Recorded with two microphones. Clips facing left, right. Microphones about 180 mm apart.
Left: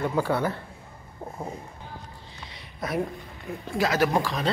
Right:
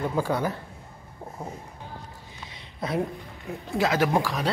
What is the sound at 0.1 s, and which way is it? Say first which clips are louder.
Speech: left 1 dB; 15° right (ahead or behind).